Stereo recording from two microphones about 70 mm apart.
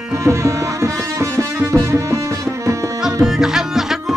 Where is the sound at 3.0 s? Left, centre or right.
Centre.